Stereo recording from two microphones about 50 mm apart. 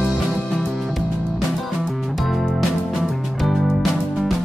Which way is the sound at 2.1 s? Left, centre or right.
Centre.